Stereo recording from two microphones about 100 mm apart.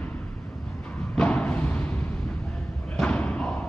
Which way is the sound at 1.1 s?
10° left (ahead or behind).